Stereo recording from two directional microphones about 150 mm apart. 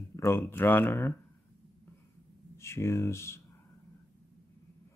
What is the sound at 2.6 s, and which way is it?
Speech, 20° left (ahead or behind).